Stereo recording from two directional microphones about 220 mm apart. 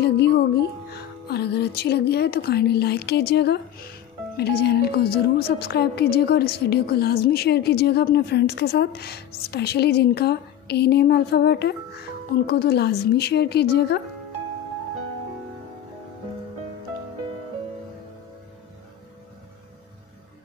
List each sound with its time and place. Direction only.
0.0 s a woman's voice: 50° left (ahead or behind)